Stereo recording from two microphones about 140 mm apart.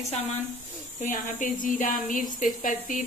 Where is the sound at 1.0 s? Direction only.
70° left (ahead or behind).